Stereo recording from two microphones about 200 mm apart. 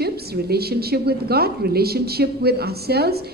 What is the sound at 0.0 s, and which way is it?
A woman's voice, 50° right (ahead or behind).